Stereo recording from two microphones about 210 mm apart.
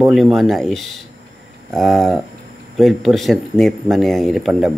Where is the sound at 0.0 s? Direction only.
Centre (ahead or behind).